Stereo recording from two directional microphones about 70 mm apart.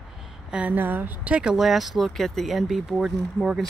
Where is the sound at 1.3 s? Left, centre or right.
Centre.